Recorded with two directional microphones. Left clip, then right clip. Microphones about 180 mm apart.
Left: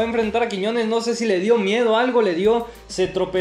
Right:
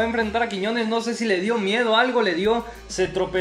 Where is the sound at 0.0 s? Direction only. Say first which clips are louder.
Left 2 dB; 5° left (ahead or behind).